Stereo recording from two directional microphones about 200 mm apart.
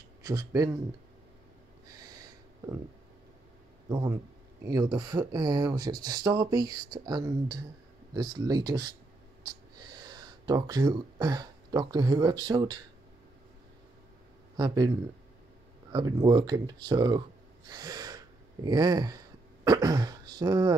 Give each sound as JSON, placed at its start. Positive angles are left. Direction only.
{"t": 0.2, "sound": "speech", "side_deg": -20}
{"t": 2.0, "sound": "snort", "side_deg": -20}
{"t": 3.9, "sound": "speech", "side_deg": -15}
{"t": 14.6, "sound": "speech", "side_deg": -20}
{"t": 15.9, "sound": "speech", "side_deg": -20}
{"t": 17.6, "sound": "a sound", "side_deg": -20}